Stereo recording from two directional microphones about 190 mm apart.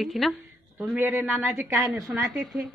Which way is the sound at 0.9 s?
10° right (ahead or behind).